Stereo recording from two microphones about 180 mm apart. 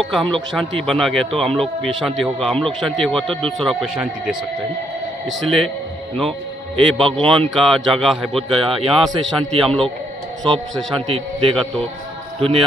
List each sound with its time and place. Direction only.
0.0 s speech: centre (ahead or behind)
5.4 s speech: centre (ahead or behind)
6.8 s speech: centre (ahead or behind)
8.5 s a man's voice: 30° right (ahead or behind)
9.7 s speech: 5° left (ahead or behind)
11.1 s a man's voice: 30° right (ahead or behind)